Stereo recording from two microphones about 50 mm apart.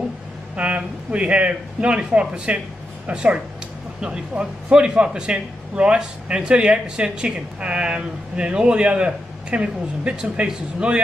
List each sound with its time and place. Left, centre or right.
0.6 s a man's voice: right